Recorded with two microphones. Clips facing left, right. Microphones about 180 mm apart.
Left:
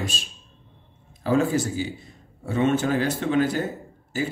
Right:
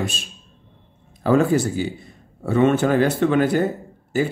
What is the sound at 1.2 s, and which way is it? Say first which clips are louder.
Speech: right 5 dB; 60° right (ahead or behind).